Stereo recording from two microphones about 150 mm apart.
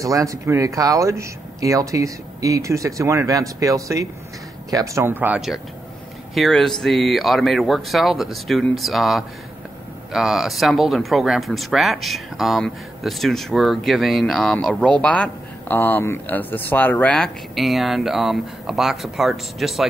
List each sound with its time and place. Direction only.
0.0 s speech: 20° right (ahead or behind); by 19.9 s centre (ahead or behind)